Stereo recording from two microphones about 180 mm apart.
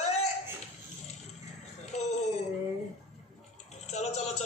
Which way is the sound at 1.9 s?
40° left (ahead or behind).